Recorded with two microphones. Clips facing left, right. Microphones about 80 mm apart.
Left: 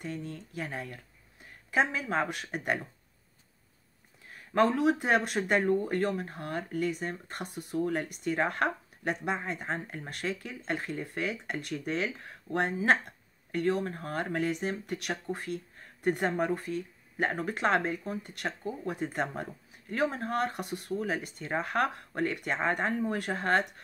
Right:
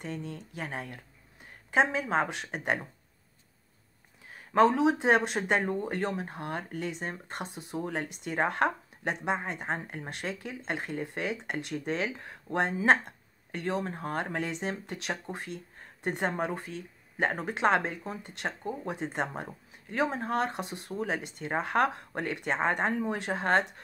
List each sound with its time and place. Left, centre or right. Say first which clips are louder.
0.6 s speech: even; right
4.6 s speech: right 2 dB; right